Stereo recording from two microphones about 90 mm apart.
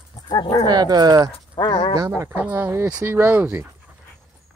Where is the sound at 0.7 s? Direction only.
50° right (ahead or behind).